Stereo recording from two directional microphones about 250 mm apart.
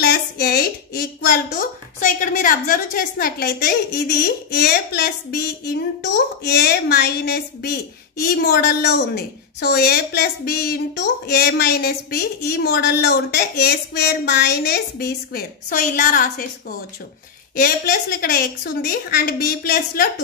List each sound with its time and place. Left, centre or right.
0.0 s a woman's voice: left